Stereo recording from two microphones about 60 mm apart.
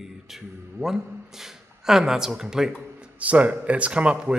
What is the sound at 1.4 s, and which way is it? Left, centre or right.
Speech, centre.